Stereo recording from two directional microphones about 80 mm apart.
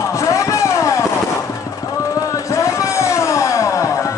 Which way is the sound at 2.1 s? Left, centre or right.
Left.